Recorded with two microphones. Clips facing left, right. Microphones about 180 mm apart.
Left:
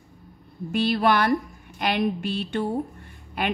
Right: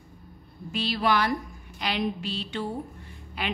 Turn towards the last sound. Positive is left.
turn(degrees=50)  # may be behind; listen again after turning